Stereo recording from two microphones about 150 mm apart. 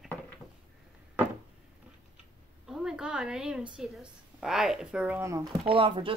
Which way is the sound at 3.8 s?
5° right (ahead or behind).